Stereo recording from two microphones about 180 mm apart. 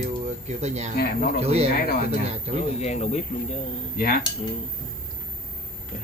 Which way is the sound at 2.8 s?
40° left (ahead or behind).